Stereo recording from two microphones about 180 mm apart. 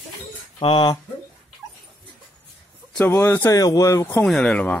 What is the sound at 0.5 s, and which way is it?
Speech, 30° left (ahead or behind).